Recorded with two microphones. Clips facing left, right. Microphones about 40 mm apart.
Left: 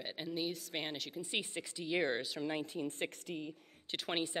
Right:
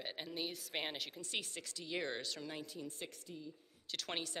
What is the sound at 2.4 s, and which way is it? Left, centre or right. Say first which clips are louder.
Speech: left 8 dB; left.